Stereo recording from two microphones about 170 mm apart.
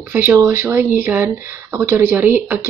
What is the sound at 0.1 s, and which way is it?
A woman's voice, 10° right (ahead or behind).